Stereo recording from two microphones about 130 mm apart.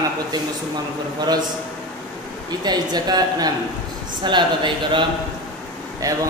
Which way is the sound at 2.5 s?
30° right (ahead or behind).